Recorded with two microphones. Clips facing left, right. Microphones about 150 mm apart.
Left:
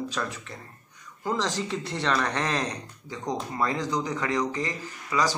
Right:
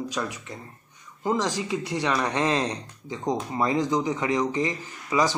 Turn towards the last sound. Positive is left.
turn(degrees=-20)  # may be behind; listen again after turning